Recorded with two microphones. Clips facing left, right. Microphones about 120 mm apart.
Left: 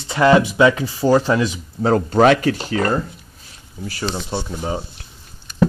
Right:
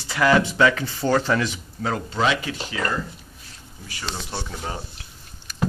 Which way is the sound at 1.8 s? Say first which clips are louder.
Left 10 dB; 45° left (ahead or behind).